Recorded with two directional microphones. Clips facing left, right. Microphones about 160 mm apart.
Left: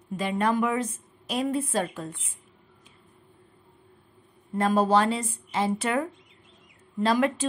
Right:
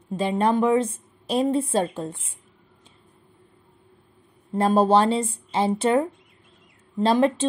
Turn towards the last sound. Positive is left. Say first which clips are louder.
# right 4 dB
turn(degrees=-30)  # may be behind; listen again after turning